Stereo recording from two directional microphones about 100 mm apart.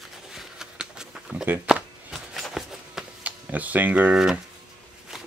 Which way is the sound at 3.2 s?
15° right (ahead or behind).